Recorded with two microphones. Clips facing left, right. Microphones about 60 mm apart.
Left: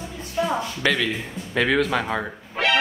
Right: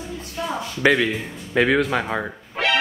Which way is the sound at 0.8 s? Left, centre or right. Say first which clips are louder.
Right 8 dB; centre.